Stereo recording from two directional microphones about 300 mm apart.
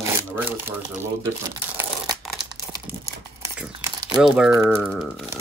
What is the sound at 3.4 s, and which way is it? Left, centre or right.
Crumpling, centre.